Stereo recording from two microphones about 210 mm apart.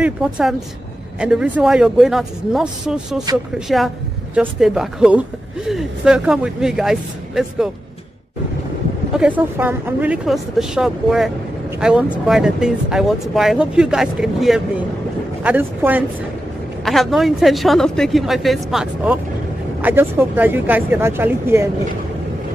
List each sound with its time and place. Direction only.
0.0 s speech: centre (ahead or behind)
9.1 s speech: 5° right (ahead or behind)